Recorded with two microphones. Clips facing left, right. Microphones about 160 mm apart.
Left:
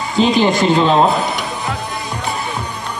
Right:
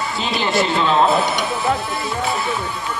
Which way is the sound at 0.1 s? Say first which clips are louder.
Left 10 dB; 20° left (ahead or behind).